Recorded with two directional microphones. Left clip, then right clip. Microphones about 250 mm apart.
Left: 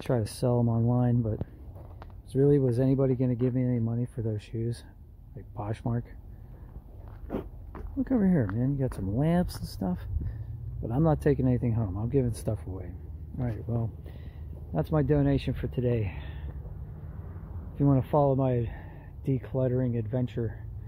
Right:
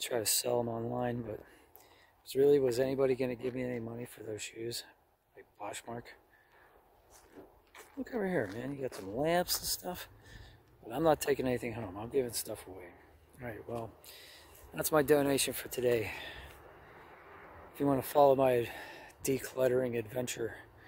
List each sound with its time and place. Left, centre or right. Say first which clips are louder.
0.0 s speech: left 4 dB; centre
2.2 s speech: left 2 dB; centre
8.0 s speech: left 6 dB; centre
14.8 s speech: even; centre
17.7 s speech: left 2 dB; centre